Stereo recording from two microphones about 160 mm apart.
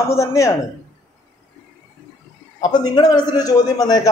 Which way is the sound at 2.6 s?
25° left (ahead or behind).